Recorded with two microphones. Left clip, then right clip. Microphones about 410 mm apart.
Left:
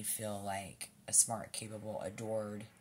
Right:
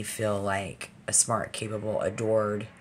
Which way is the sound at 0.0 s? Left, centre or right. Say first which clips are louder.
Right 13 dB; left.